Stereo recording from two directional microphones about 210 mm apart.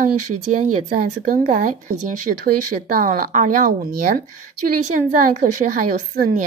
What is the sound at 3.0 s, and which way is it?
A woman's voice, 40° right (ahead or behind).